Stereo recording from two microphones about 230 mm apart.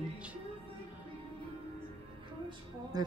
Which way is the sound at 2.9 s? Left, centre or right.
Centre.